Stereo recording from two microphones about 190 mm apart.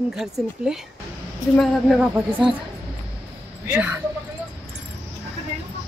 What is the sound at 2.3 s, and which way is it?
Speech, 25° right (ahead or behind).